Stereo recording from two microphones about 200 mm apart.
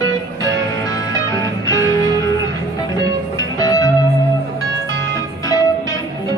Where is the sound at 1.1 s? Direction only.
20° left (ahead or behind).